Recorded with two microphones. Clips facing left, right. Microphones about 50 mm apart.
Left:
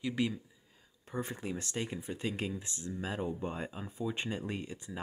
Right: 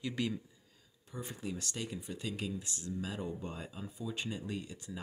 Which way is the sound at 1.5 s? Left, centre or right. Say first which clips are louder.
Left 1 dB; left.